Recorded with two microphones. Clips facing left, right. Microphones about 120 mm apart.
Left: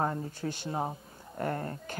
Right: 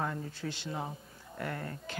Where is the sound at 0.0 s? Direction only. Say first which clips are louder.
Left 4 dB; 35° left (ahead or behind).